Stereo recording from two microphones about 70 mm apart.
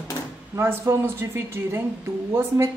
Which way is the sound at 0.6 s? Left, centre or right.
Right.